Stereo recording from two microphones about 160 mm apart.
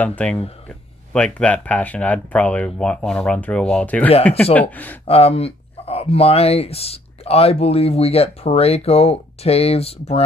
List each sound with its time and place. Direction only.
0.0 s speech: 10° left (ahead or behind)
5.0 s speech: 40° left (ahead or behind)